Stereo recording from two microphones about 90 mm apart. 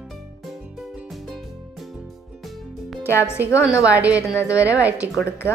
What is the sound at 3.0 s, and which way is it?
Speech, 30° left (ahead or behind).